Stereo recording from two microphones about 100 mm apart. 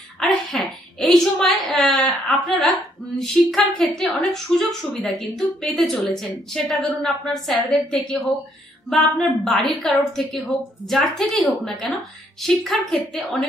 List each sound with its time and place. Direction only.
0.2 s a woman's voice: centre (ahead or behind)
3.2 s a woman's voice: 5° left (ahead or behind)